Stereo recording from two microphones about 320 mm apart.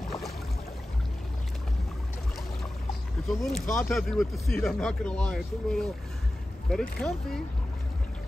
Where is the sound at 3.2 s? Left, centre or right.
Centre.